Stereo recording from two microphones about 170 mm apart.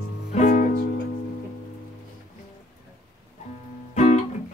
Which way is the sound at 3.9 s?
40° left (ahead or behind).